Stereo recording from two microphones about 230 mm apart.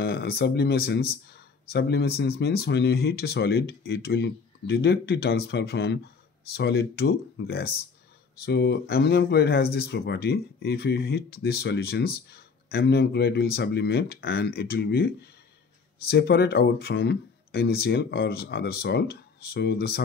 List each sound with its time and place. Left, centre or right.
0.0 s speech: left
16.1 s speech: left